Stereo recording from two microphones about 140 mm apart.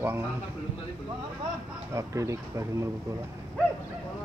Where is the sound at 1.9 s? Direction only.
20° right (ahead or behind).